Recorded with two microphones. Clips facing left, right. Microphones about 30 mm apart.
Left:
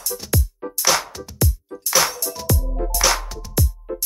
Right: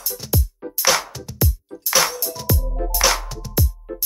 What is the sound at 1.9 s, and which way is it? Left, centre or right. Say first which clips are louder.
Music: even; centre.